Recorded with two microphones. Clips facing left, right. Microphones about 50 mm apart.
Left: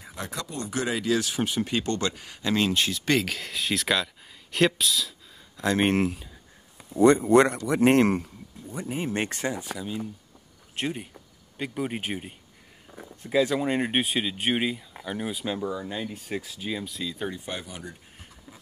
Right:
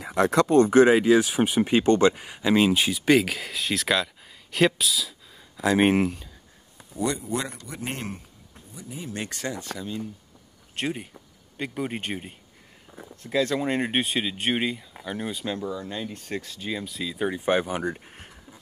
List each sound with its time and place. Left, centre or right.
0.0 s speech: right
0.6 s speech: right; by 6.2 s centre
7.2 s speech: left
8.7 s speech: left
9.5 s speech: centre
10.8 s speech: centre
12.8 s a sound: centre
13.1 s speech: centre
17.5 s speech: right
17.9 s a sound: right